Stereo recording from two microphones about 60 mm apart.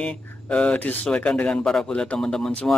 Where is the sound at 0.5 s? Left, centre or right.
Centre.